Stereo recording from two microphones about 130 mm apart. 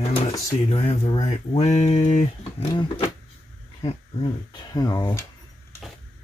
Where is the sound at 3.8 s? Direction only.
40° left (ahead or behind).